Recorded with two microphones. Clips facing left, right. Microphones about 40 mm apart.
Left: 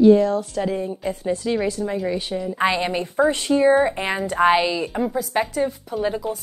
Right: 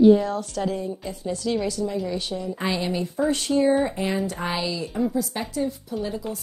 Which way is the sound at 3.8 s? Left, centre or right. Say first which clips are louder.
Left 3 dB; left.